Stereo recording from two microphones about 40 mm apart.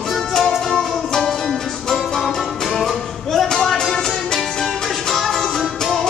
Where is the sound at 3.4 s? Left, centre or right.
Centre.